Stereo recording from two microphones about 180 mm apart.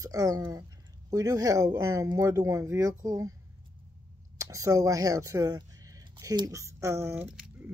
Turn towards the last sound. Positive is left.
turn(degrees=-15)  # may be behind; listen again after turning